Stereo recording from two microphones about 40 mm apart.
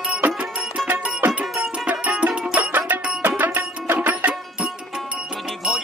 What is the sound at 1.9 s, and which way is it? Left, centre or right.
Music, right.